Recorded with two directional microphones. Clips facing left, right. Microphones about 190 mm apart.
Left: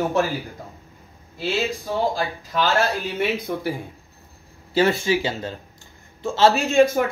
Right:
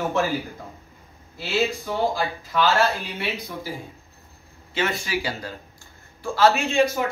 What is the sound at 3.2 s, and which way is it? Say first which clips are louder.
Speech: left 9 dB; 55° left (ahead or behind).